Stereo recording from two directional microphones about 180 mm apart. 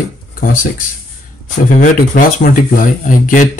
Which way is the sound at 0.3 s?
50° left (ahead or behind).